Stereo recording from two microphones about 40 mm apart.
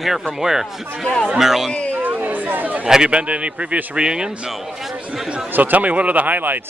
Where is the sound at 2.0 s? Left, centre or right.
Right.